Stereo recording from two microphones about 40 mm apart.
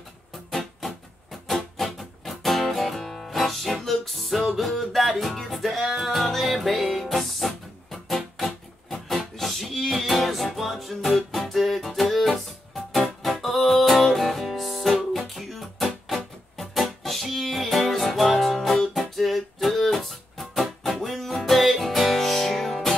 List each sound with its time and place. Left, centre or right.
0.3 s music: centre